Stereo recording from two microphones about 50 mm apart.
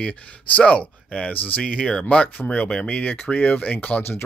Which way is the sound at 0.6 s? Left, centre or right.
Left.